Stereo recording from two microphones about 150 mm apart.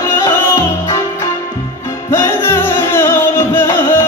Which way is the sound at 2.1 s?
15° left (ahead or behind).